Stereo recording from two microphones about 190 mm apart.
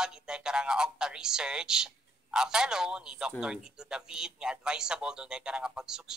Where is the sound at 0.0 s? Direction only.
5° right (ahead or behind).